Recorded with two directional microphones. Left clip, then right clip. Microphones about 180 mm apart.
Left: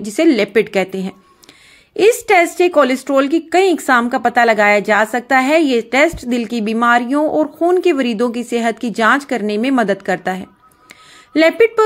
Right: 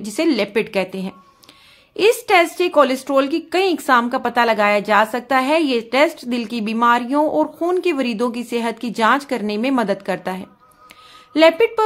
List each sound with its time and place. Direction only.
0.0 s speech: 15° left (ahead or behind)
2.2 s speech: 20° left (ahead or behind)